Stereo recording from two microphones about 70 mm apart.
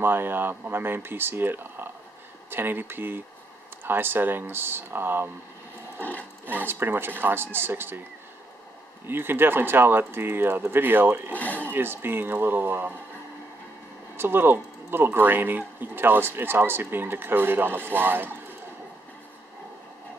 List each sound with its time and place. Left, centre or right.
0.0 s speech: right
5.9 s a sound: left
6.4 s speech: right
9.0 s speech: right
11.3 s speech: left
11.7 s speech: right
14.1 s speech: right